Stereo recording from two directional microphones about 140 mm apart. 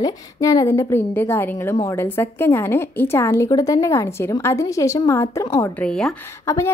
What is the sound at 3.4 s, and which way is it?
A woman's voice, 25° left (ahead or behind).